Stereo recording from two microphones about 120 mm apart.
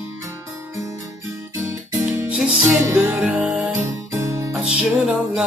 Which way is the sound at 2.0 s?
15° right (ahead or behind).